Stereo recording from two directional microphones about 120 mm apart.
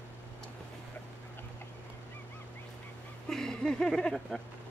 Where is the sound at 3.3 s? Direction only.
5° left (ahead or behind).